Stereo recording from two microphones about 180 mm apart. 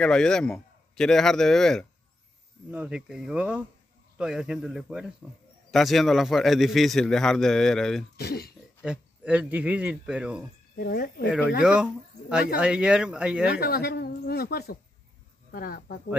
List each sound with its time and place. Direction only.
0.0 s a man's voice: 5° left (ahead or behind)
8.2 s speech: 60° left (ahead or behind)
8.8 s speech: 5° right (ahead or behind)
10.8 s speech: 60° left (ahead or behind)
11.2 s a man's voice: centre (ahead or behind)
13.6 s speech: 60° left (ahead or behind)